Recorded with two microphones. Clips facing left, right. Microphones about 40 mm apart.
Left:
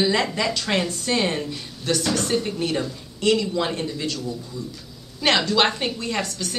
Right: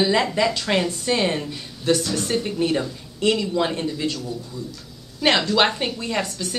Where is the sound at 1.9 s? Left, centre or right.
Centre.